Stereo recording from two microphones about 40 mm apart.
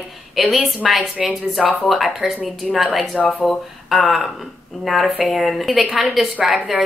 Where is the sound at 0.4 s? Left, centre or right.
Centre.